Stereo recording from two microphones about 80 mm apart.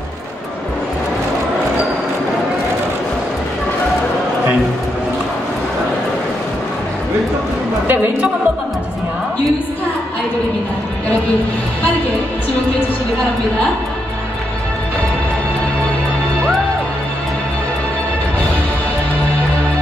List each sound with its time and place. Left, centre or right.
7.9 s music: right